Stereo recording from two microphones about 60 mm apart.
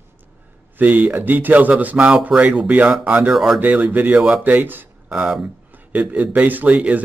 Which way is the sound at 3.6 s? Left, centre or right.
Right.